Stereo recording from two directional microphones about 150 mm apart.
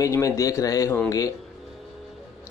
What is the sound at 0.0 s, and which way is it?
Speech, 20° left (ahead or behind).